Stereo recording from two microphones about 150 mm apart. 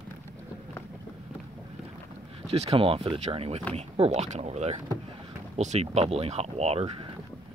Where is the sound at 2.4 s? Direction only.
45° right (ahead or behind).